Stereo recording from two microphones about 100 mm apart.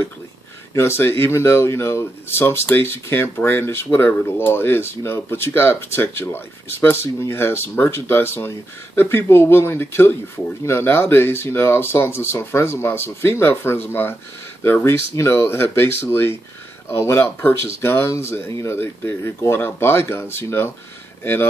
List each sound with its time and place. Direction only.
0.7 s speech: 25° left (ahead or behind)